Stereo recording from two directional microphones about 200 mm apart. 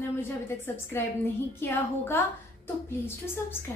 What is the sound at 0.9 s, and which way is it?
A woman's voice, 10° left (ahead or behind).